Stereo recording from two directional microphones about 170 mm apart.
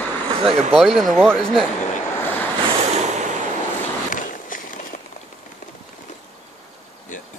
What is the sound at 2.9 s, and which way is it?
Vehicle, 40° right (ahead or behind).